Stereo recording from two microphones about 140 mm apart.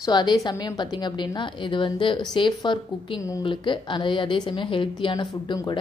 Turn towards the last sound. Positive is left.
turn(degrees=30)  # may be behind; listen again after turning